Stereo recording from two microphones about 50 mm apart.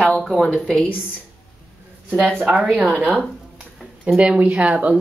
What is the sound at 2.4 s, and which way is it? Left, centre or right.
Speech, right.